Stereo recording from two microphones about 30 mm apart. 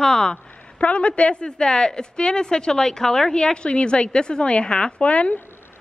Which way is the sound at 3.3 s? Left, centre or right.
Left.